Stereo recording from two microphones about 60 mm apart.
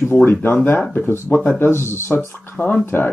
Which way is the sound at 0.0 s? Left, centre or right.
Left.